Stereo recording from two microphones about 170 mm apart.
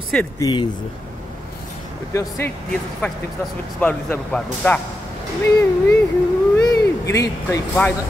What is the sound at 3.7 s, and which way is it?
Speech, 10° left (ahead or behind).